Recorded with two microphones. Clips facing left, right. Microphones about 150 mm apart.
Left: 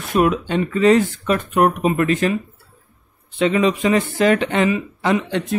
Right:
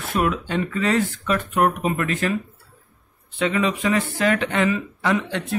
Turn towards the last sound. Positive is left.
turn(degrees=25)  # may be behind; listen again after turning